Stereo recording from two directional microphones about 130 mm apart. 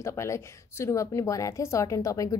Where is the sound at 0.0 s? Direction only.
20° left (ahead or behind).